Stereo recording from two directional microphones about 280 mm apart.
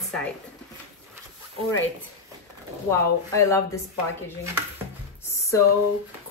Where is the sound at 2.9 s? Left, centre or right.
Centre.